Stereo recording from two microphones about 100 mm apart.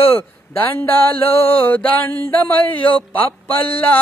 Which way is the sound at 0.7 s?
20° left (ahead or behind).